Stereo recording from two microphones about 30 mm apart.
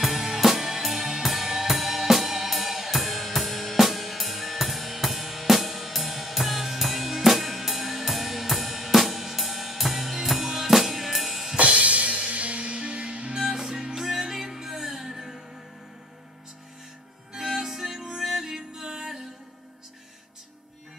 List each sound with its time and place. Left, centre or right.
0.0 s drum kit: centre
0.8 s music: centre
1.2 s drum kit: centre
11.5 s music: right
12.7 s music: right
13.4 s music: centre
17.3 s music: centre